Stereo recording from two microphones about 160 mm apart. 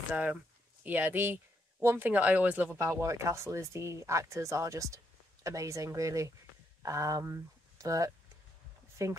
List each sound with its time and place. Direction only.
0.1 s speech: 10° right (ahead or behind)